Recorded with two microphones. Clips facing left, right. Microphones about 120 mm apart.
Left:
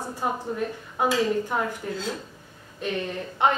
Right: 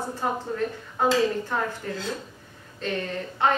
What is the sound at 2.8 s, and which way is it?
Speech, 15° left (ahead or behind).